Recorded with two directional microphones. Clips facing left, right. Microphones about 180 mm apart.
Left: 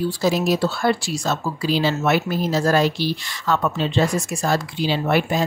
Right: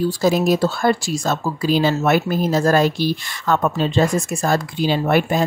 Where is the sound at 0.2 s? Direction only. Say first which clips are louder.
Right 3 dB; 50° right (ahead or behind).